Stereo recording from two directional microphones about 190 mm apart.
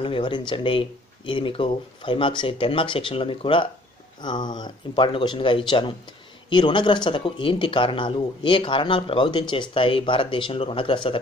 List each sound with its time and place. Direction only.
0.0 s speech: 25° left (ahead or behind)